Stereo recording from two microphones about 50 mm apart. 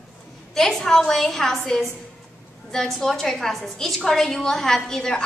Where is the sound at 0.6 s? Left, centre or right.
Centre.